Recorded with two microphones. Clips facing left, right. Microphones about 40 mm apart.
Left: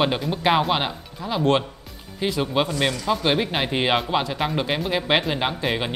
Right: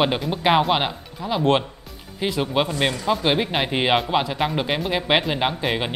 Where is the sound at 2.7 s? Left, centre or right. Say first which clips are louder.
Right 1 dB; right.